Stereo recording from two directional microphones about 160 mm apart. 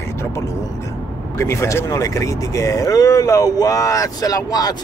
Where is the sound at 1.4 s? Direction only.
15° left (ahead or behind).